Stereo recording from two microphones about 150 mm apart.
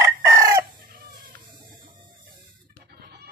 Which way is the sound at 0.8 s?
70° right (ahead or behind).